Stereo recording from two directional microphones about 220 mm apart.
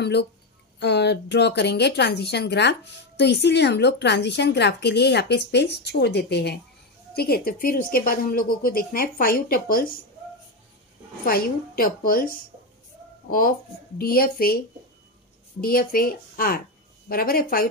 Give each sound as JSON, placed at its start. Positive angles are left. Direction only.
{"t": 0.0, "sound": "speech", "side_deg": 50}
{"t": 11.2, "sound": "speech", "side_deg": 40}
{"t": 15.6, "sound": "speech", "side_deg": 40}